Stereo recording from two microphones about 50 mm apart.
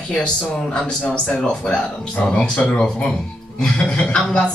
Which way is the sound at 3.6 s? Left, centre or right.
Left.